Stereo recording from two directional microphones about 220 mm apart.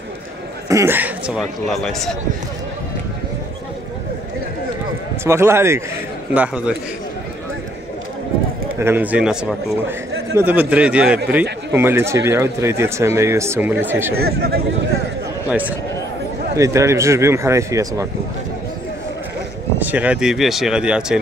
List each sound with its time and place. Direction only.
0.7 s a man's voice: 10° right (ahead or behind)
5.2 s speech: 10° right (ahead or behind)
8.7 s speech: 10° right (ahead or behind)
14.1 s speech: 45° right (ahead or behind)
15.4 s a man's voice: 5° right (ahead or behind)
19.8 s a man's voice: 5° right (ahead or behind)